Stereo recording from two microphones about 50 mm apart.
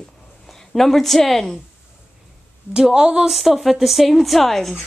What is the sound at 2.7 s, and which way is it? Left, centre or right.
Speech, centre.